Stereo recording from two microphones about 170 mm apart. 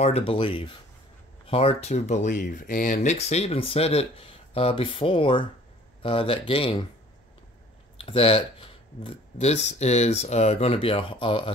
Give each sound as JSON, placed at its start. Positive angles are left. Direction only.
{"t": 0.0, "sound": "speech", "side_deg": 35}
{"t": 8.0, "sound": "speech", "side_deg": 35}